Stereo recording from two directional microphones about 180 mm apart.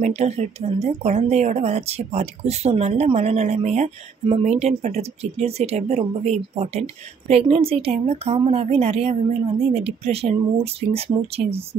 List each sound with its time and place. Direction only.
0.0 s speech: 40° right (ahead or behind)